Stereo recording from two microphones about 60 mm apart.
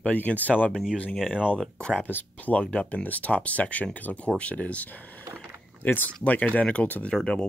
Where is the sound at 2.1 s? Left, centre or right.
Left.